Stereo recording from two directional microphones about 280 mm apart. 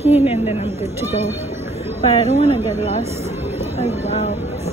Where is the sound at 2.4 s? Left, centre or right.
Left.